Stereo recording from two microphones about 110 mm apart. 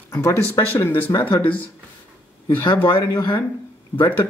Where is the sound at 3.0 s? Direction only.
35° left (ahead or behind).